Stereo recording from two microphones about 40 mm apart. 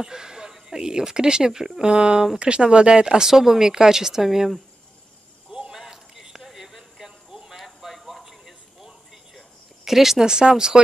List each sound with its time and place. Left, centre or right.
0.0 s speech: centre
1.8 s speech: right
3.2 s speech: centre
5.5 s a sound: centre
9.8 s speech: centre
10.2 s speech: centre